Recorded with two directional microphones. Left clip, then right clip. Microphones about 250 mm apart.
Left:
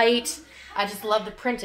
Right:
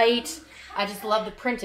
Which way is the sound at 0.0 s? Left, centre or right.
Centre.